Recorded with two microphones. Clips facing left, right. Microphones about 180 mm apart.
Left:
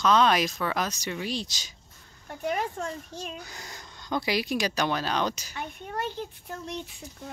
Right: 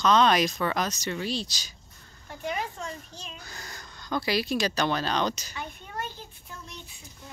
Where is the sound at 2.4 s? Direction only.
50° left (ahead or behind).